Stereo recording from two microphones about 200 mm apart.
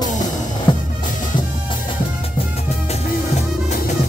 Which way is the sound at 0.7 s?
25° left (ahead or behind).